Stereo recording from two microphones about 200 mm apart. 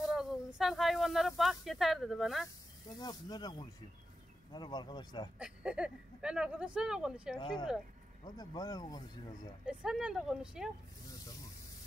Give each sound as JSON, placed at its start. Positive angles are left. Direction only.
{"t": 0.1, "sound": "speech", "side_deg": 0}
{"t": 2.4, "sound": "speech", "side_deg": 20}
{"t": 5.4, "sound": "speech", "side_deg": -5}
{"t": 7.3, "sound": "speech", "side_deg": 25}
{"t": 9.7, "sound": "speech", "side_deg": -5}